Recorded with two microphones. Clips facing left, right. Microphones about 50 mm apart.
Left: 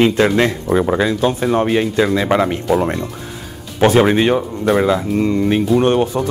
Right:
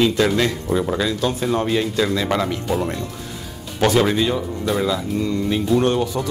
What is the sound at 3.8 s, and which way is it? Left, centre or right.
Speech, left.